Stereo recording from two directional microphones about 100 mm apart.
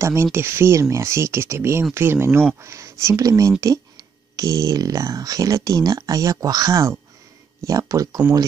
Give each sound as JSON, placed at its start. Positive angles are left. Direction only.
{"t": 0.0, "sound": "speech", "side_deg": -25}